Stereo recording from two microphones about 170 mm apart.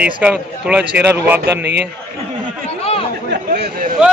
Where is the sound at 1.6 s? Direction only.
80° right.